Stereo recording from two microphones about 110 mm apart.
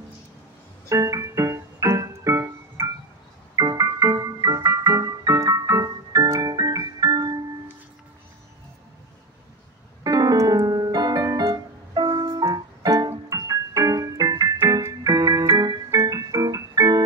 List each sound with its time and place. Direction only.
0.8 s keyboard: 30° right (ahead or behind)
10.0 s piano: 35° right (ahead or behind)
13.3 s music: 35° right (ahead or behind)
14.8 s keyboard: 35° right (ahead or behind)